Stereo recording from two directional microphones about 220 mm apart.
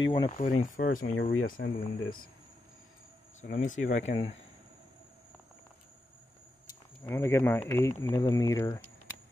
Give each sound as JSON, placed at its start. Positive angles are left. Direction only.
{"t": 0.0, "sound": "speech", "side_deg": 20}
{"t": 0.4, "sound": "speech", "side_deg": 35}
{"t": 3.3, "sound": "speech", "side_deg": 35}
{"t": 6.7, "sound": "speech", "side_deg": 10}